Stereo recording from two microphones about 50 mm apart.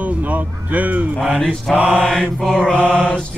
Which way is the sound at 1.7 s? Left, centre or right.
Right.